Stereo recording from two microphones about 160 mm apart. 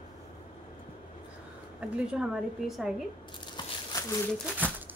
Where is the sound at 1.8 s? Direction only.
5° right (ahead or behind).